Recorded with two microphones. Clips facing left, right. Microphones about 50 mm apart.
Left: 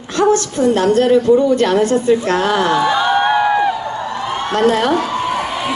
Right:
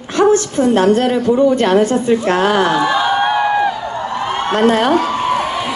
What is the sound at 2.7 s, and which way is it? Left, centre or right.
Crowd, centre.